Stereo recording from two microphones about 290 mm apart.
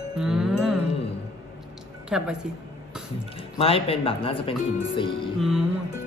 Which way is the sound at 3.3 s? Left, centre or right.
Centre.